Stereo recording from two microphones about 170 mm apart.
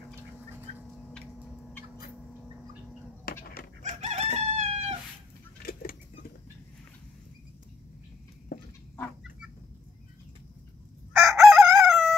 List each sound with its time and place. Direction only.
3.4 s chicken: 60° left (ahead or behind)
4.0 s chicken: 40° right (ahead or behind)
5.7 s vehicle: 60° left (ahead or behind)
11.1 s crowing: centre (ahead or behind)